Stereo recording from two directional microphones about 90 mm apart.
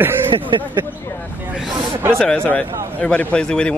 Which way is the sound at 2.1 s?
10° left (ahead or behind).